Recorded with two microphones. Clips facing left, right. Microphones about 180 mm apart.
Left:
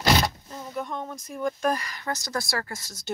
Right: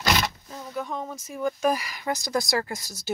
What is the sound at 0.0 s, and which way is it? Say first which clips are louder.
Roaring cats: left 3 dB; 30° left (ahead or behind).